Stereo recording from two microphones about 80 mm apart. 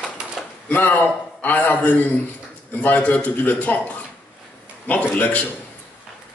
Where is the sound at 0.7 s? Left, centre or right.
Left.